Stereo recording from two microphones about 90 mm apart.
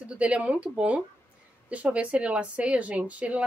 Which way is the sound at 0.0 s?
15° right (ahead or behind).